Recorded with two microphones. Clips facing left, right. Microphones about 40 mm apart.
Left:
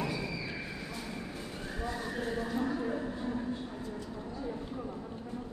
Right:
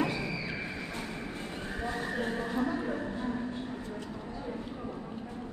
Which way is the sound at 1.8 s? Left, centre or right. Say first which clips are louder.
Right 3 dB; right.